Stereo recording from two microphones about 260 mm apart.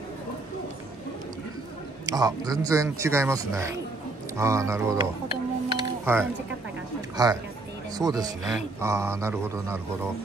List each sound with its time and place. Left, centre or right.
2.0 s a man's voice: centre
5.7 s a sound: centre
7.2 s a man's voice: centre